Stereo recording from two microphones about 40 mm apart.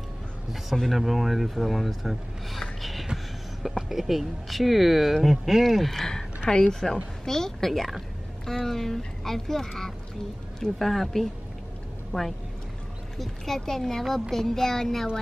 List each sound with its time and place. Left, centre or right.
0.8 s speech: centre
2.8 s music: centre
3.6 s speech: centre